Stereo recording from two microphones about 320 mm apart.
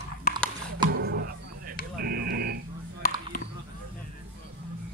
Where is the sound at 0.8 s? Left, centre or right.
Right.